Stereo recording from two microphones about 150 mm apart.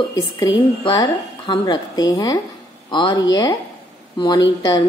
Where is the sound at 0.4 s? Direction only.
25° left (ahead or behind).